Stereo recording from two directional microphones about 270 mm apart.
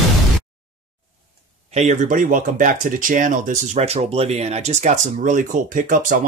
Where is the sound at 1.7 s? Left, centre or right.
Right.